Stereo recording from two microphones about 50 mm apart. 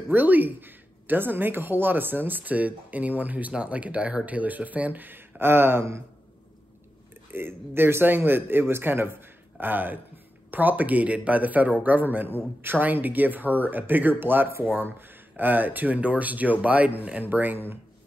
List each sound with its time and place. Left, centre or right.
0.1 s speech: right
7.2 s a man's voice: right